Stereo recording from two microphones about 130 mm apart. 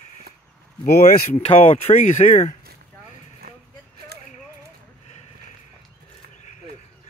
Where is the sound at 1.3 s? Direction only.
55° left (ahead or behind).